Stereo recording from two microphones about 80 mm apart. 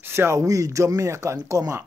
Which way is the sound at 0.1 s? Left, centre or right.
Right.